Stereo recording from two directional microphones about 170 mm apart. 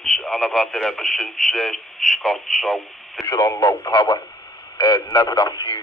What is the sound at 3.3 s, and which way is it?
Speech, 20° left (ahead or behind).